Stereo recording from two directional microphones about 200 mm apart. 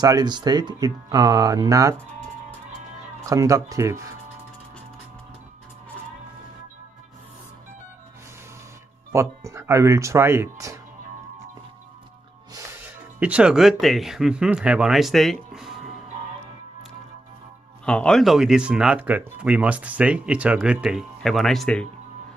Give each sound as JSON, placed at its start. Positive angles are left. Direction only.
{"t": 0.0, "sound": "speech", "side_deg": -20}
{"t": 3.3, "sound": "speech", "side_deg": -15}
{"t": 9.1, "sound": "speech", "side_deg": -15}
{"t": 12.5, "sound": "speech", "side_deg": -10}
{"t": 17.8, "sound": "speech", "side_deg": 5}